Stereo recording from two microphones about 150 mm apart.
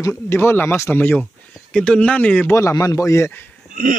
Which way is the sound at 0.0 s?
15° left (ahead or behind).